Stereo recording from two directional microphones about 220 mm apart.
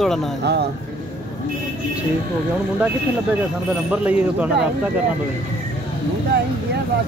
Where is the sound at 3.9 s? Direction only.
5° right (ahead or behind).